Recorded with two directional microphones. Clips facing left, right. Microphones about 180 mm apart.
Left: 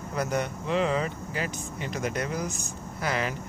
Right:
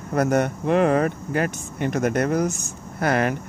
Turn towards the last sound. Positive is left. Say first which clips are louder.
# right 8 dB
turn(degrees=-55)  # may be behind; listen again after turning